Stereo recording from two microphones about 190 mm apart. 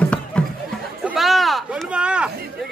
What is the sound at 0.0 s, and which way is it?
Music, 5° left (ahead or behind).